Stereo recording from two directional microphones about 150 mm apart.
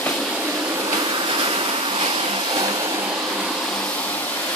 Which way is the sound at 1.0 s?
30° right (ahead or behind).